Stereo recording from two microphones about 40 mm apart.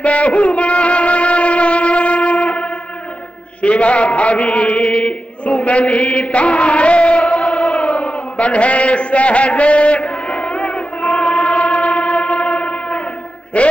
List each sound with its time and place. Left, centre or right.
0.0 s music: left
3.6 s chant: left
13.5 s a man's voice: left